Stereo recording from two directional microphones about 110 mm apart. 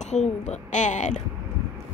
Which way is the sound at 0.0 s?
90° left.